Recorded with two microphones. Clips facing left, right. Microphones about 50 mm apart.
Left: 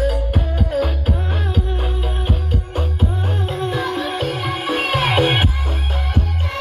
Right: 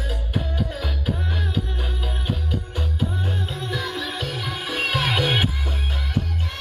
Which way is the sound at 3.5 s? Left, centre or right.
Left.